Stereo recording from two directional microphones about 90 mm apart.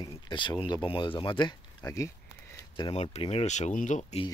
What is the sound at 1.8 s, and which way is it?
Speech, 35° left (ahead or behind).